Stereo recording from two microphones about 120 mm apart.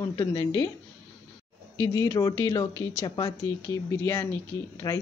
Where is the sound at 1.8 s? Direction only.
25° left (ahead or behind).